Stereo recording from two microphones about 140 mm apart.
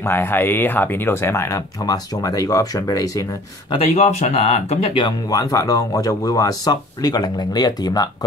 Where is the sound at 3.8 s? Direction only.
50° left (ahead or behind).